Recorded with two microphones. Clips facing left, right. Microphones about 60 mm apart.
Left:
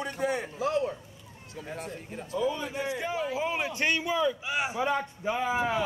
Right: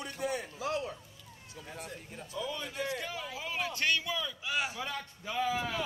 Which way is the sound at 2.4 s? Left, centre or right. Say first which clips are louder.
Left 7 dB; left.